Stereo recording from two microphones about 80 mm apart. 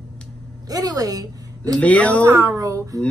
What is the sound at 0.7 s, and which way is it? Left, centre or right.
A woman's voice, right.